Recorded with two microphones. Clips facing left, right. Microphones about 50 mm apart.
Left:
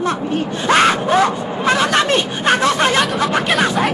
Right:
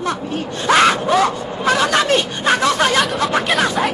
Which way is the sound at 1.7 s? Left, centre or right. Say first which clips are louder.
Even; left.